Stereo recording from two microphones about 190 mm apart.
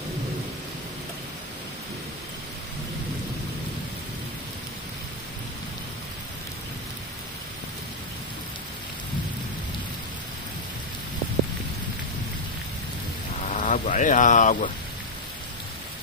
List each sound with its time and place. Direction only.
13.5 s rain: 40° left (ahead or behind)